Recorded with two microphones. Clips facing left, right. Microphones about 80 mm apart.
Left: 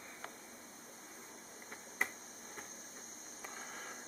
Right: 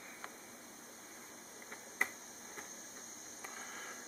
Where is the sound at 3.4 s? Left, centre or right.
Centre.